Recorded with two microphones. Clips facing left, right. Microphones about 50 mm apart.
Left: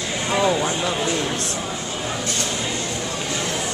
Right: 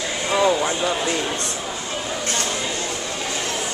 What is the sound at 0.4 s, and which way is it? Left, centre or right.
Speech, centre.